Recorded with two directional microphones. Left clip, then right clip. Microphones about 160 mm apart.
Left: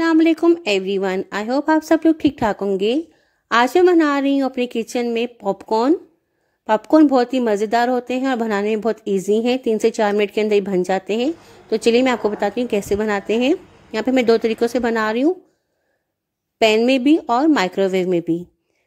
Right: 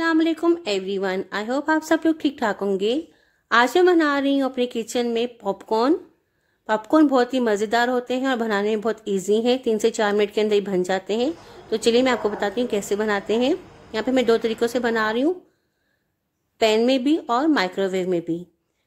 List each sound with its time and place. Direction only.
0.0 s a sound: 40° left (ahead or behind)
0.6 s speech: 40° left (ahead or behind)
16.5 s speech: 35° left (ahead or behind)